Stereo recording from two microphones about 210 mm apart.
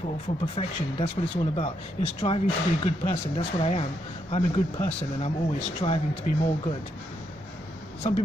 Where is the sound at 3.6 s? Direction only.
30° left (ahead or behind).